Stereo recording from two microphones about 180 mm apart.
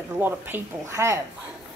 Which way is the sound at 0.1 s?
10° right (ahead or behind).